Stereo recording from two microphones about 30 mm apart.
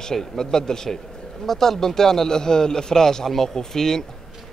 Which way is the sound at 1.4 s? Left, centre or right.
Centre.